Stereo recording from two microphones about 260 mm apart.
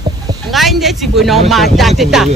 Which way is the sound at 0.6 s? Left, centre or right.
Centre.